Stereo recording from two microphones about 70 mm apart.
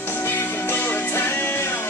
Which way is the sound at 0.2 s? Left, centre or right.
Left.